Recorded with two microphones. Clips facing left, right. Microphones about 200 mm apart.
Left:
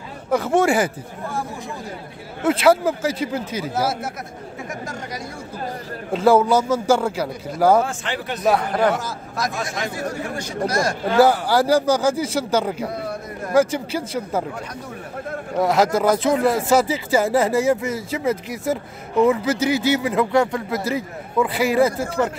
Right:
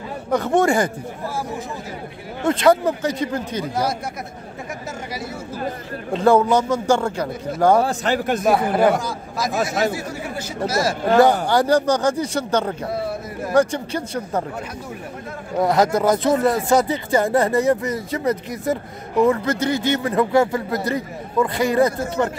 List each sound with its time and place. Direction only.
0.3 s speech: centre (ahead or behind)
2.4 s speech: 5° left (ahead or behind)
6.1 s speech: 5° left (ahead or behind)
7.8 s a man's voice: 40° right (ahead or behind)
8.5 s speech: 5° right (ahead or behind)
9.9 s speech: 5° right (ahead or behind)
11.4 s speech: 5° left (ahead or behind)
15.6 s speech: centre (ahead or behind)